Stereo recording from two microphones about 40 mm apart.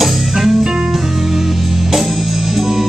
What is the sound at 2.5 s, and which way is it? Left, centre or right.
Music, centre.